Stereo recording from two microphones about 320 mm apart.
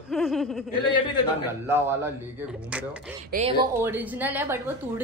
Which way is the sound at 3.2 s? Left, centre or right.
Right.